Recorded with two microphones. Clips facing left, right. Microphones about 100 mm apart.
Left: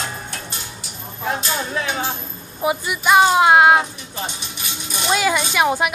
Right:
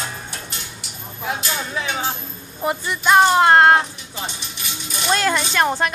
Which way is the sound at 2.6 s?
5° left (ahead or behind).